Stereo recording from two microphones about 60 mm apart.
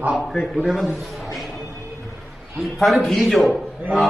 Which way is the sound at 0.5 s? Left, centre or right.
Centre.